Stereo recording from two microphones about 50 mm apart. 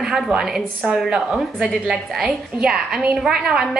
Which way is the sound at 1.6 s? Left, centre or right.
Centre.